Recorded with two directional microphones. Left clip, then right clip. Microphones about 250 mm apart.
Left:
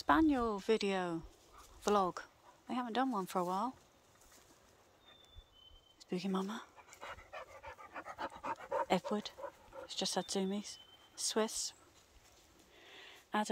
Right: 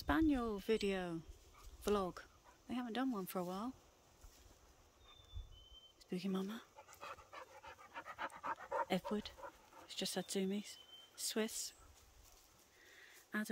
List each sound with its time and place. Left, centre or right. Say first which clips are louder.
0.0 s speech: left 6 dB; centre
5.9 s speech: left 5 dB; centre
7.6 s pant: left 4 dB; centre
8.2 s pant: left 2 dB; left
8.8 s speech: left 6 dB; centre
12.9 s a sound: left 8 dB; centre